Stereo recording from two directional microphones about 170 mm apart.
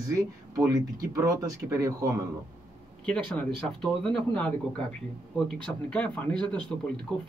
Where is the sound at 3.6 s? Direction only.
5° left (ahead or behind).